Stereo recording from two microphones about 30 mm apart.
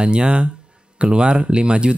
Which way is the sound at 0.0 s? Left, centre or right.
Right.